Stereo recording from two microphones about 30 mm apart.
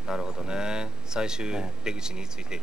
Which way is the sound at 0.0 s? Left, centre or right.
Centre.